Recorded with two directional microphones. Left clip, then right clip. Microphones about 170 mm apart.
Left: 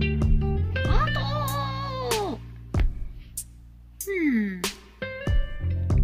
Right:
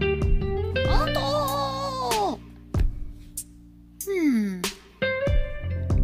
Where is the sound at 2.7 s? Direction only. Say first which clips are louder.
Left 1 dB; centre (ahead or behind).